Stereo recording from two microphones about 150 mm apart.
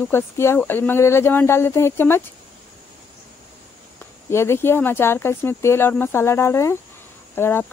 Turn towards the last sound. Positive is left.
turn(degrees=15)  # may be behind; listen again after turning